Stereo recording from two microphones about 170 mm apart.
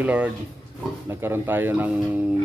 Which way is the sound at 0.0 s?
10° right (ahead or behind).